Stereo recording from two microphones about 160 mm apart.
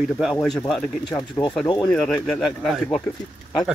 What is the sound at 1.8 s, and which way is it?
Speech, 5° left (ahead or behind).